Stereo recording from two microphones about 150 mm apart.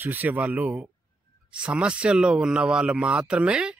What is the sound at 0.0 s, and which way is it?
Speech, 15° right (ahead or behind).